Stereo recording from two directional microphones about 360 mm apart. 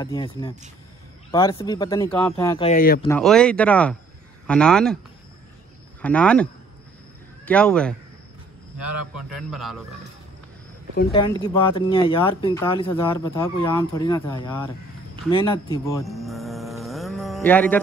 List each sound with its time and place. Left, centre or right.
0.0 s speech: centre
2.7 s speech: left
3.1 s speech: centre
6.0 s speech: centre
9.5 s speech: centre
11.0 s speech: centre
15.3 s a sound: centre